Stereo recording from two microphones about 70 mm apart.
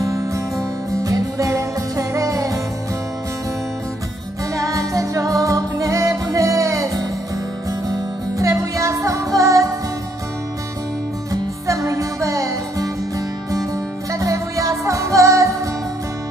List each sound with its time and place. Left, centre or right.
0.0 s music: right
4.6 s music: right
11.6 s music: right
14.1 s music: right